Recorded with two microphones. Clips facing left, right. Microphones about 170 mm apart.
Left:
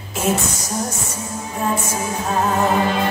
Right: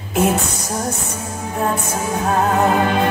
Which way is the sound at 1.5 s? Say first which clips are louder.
Right 1 dB; 55° right (ahead or behind).